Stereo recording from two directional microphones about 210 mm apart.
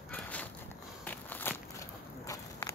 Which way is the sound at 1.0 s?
10° left (ahead or behind).